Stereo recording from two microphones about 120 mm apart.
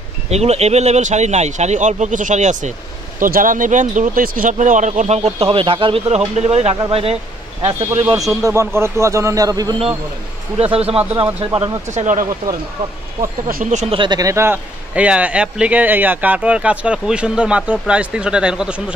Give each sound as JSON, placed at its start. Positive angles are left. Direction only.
{"t": 0.3, "sound": "speech", "side_deg": -65}
{"t": 6.7, "sound": "speech", "side_deg": -50}
{"t": 7.6, "sound": "speech", "side_deg": -70}
{"t": 8.1, "sound": "a man's voice", "side_deg": -25}
{"t": 10.6, "sound": "speech", "side_deg": -55}
{"t": 11.5, "sound": "speech", "side_deg": -35}
{"t": 11.9, "sound": "speech", "side_deg": -85}
{"t": 13.8, "sound": "speech", "side_deg": -45}
{"t": 14.2, "sound": "a man's voice", "side_deg": -20}
{"t": 15.0, "sound": "speech", "side_deg": -10}